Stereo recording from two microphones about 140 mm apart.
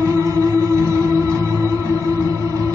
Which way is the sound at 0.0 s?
25° right (ahead or behind).